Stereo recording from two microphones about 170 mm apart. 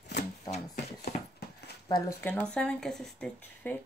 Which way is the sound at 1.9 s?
25° left (ahead or behind).